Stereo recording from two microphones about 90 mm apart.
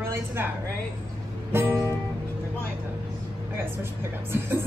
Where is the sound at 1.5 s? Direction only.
25° right (ahead or behind).